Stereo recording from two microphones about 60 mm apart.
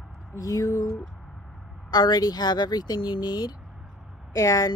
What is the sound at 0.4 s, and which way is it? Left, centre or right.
Speech, left.